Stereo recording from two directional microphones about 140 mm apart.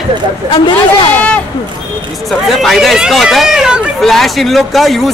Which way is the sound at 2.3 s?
Centre (ahead or behind).